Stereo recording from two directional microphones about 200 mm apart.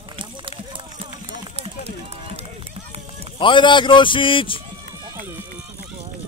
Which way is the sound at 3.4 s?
25° left (ahead or behind).